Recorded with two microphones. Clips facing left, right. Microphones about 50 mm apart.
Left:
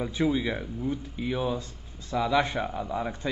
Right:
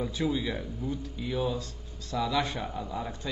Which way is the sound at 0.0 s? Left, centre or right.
Left.